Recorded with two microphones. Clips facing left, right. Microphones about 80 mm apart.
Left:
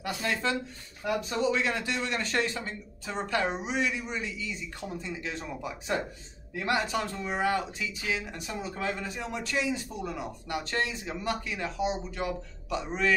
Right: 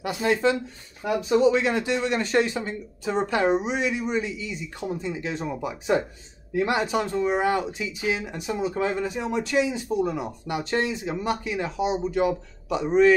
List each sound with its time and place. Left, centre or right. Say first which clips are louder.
0.0 s speech: right 8 dB; right